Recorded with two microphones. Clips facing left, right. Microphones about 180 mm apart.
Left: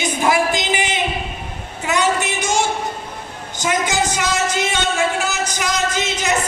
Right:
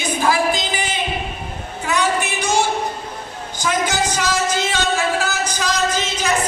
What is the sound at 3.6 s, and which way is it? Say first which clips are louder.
Music: left 1 dB; 25° left (ahead or behind).